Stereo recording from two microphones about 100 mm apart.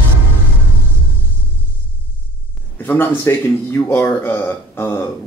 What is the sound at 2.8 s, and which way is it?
A man's voice, 20° left (ahead or behind).